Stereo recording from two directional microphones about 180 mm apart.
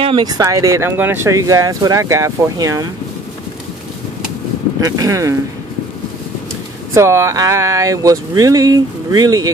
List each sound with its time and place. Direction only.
0.0 s speech: 25° right (ahead or behind)
4.8 s speech: 20° right (ahead or behind)
6.9 s speech: 15° right (ahead or behind)